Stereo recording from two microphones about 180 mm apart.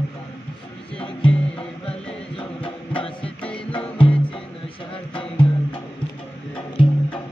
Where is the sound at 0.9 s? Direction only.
30° left (ahead or behind).